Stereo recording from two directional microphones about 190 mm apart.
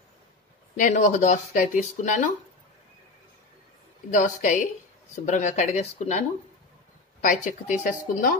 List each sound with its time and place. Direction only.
0.7 s speech: 45° left (ahead or behind)
4.1 s speech: 40° left (ahead or behind)